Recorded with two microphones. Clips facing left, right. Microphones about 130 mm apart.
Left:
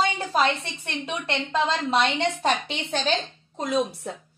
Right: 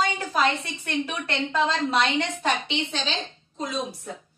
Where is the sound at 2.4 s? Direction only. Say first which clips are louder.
Left 1 dB; 45° left (ahead or behind).